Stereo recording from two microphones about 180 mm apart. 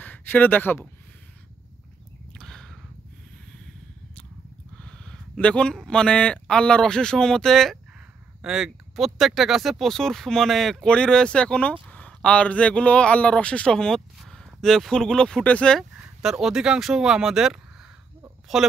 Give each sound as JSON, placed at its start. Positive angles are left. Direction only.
{"t": 0.0, "sound": "speech", "side_deg": 10}
{"t": 2.3, "sound": "a sound", "side_deg": 5}
{"t": 4.8, "sound": "speech", "side_deg": 5}